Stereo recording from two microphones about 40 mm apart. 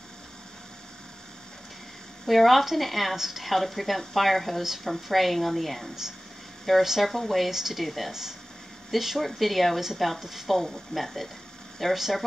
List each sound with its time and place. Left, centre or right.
2.2 s a woman's voice: centre
8.1 s a woman's voice: centre